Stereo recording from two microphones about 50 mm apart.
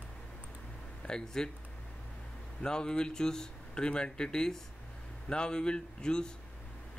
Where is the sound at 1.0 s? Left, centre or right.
Centre.